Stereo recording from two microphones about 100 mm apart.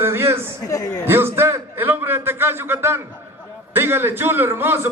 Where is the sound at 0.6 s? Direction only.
35° left (ahead or behind).